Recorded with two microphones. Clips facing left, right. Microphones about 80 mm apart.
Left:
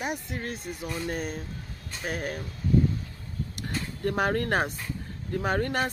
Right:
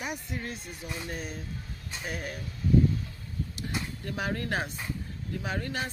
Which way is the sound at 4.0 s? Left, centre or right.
Left.